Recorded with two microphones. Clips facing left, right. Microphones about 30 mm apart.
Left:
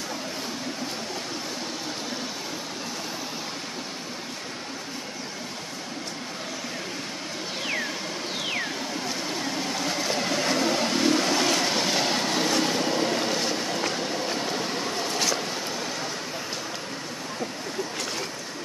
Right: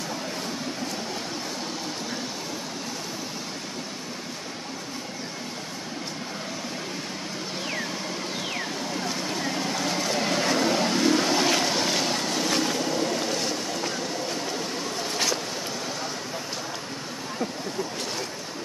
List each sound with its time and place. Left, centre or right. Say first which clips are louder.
9.6 s vehicle: right 1 dB; centre
11.6 s train: even; centre
12.1 s vehicle: left 2 dB; centre
12.8 s vehicle: left 1 dB; left
13.2 s vehicle: left 1 dB; centre